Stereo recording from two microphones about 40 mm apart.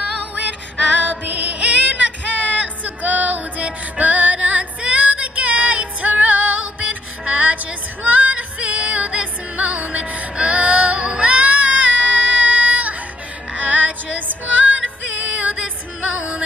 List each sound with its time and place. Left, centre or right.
0.2 s female singing: right
1.0 s music: right
4.0 s female singing: right
13.6 s music: right